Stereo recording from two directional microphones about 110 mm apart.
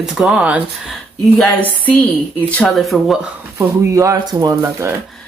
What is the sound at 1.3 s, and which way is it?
Speech, 10° left (ahead or behind).